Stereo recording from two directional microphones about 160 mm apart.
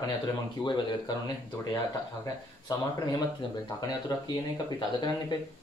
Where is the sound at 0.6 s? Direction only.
30° left (ahead or behind).